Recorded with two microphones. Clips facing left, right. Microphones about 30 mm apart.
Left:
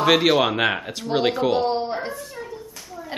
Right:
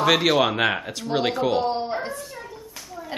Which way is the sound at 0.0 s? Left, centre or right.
Centre.